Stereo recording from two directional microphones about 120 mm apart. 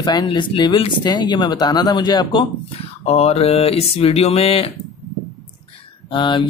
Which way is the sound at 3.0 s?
60° left (ahead or behind).